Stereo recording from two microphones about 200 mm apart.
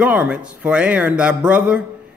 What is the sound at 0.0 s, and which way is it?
A man's voice, 5° right (ahead or behind).